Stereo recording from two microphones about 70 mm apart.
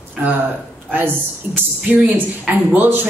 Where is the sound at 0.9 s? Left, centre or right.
Right.